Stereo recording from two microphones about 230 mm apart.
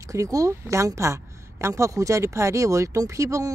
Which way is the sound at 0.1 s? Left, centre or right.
Centre.